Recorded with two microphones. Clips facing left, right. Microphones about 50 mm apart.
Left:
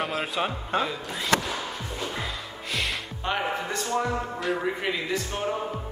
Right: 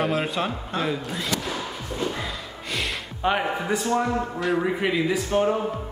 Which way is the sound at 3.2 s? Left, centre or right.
Centre.